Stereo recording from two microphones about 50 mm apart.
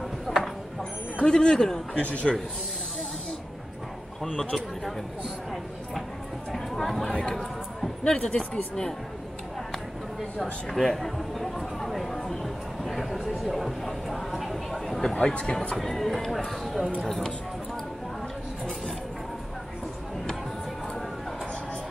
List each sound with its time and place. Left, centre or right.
0.3 s a sound: centre
1.2 s a man's voice: centre
2.0 s speech: left
6.5 s chatter: centre
7.1 s a man's voice: centre
10.4 s a sound: centre
15.1 s a man's voice: centre